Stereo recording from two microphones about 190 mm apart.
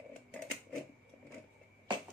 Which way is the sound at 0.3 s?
5° left (ahead or behind).